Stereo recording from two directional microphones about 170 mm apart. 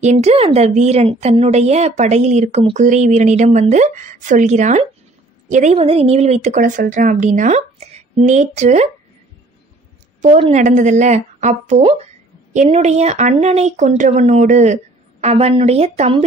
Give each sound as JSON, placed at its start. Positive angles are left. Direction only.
{"t": 0.0, "sound": "speech", "side_deg": -40}
{"t": 10.5, "sound": "speech", "side_deg": -45}